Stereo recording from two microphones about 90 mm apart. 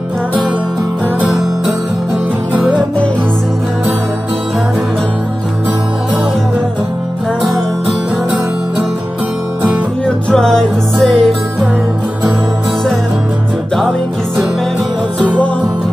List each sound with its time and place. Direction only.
10.0 s music: 5° left (ahead or behind)